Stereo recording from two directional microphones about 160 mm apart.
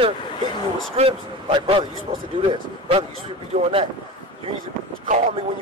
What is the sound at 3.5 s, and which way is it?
Speech, 40° right (ahead or behind).